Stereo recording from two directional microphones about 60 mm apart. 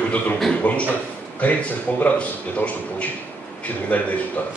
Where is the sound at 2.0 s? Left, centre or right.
Left.